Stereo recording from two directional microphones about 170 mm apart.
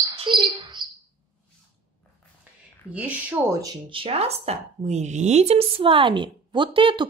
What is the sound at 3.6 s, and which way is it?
Speech, 30° right (ahead or behind).